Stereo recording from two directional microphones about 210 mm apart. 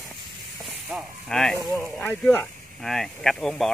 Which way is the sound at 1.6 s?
15° right (ahead or behind).